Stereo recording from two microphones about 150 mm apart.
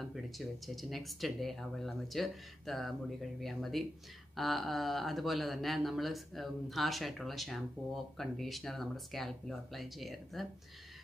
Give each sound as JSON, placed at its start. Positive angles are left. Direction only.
{"t": 0.1, "sound": "speech", "side_deg": 0}